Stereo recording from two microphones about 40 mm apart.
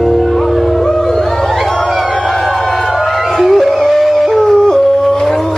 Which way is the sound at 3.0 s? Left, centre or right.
Centre.